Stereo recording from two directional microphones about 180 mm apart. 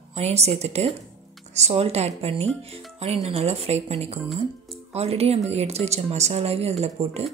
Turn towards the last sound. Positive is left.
turn(degrees=-35)  # may be behind; listen again after turning